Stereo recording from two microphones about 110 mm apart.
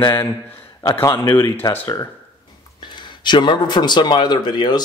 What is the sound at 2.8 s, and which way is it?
Speech, 45° left (ahead or behind).